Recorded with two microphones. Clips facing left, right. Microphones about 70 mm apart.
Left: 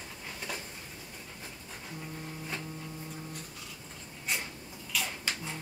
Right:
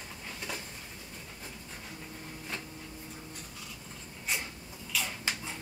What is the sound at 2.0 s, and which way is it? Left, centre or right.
Vehicle, centre.